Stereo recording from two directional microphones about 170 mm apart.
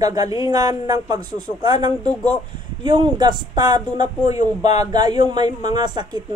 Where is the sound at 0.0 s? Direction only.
20° right (ahead or behind).